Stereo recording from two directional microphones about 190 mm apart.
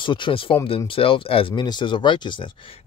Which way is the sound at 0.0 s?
25° left (ahead or behind).